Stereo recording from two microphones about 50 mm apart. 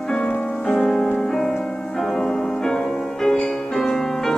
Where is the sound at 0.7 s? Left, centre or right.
Centre.